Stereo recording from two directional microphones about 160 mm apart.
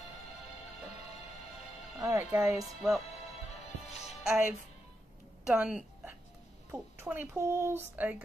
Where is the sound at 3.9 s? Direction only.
40° left (ahead or behind).